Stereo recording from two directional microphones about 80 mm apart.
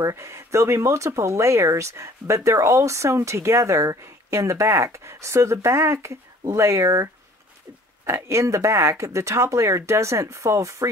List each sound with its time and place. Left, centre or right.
0.0 s speech: right